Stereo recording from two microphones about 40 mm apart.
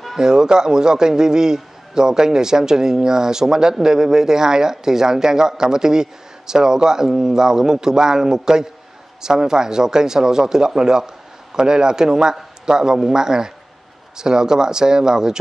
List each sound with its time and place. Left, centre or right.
0.2 s speech: centre